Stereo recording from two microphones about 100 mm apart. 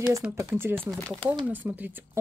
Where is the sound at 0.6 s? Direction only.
20° right (ahead or behind).